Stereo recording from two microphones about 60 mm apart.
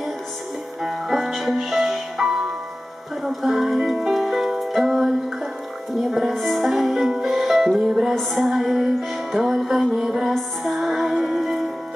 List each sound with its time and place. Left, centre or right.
0.8 s music: centre